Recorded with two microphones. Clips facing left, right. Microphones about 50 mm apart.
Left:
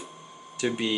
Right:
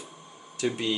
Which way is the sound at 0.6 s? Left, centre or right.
Left.